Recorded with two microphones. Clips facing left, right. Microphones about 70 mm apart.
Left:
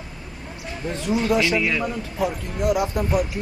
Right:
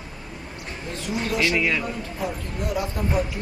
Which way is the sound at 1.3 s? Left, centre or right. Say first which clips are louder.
Left 3 dB; left.